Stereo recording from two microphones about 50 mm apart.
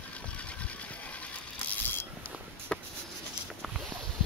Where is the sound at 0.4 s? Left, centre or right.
Left.